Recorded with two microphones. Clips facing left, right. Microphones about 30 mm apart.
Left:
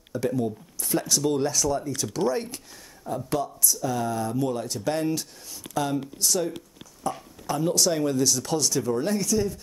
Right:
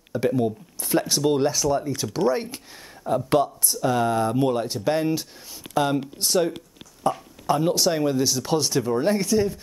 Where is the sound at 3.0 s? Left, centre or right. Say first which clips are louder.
Right 7 dB; right.